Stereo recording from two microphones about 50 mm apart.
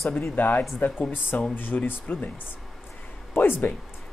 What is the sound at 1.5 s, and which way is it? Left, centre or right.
Speech, left.